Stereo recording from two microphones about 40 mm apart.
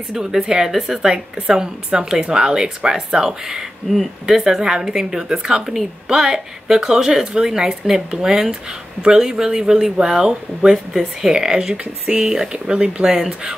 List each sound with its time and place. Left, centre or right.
0.1 s speech: centre
1.3 s speech: centre
13.1 s speech: centre